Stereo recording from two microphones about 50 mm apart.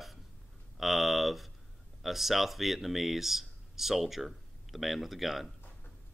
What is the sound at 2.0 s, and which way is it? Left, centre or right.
Speech, centre.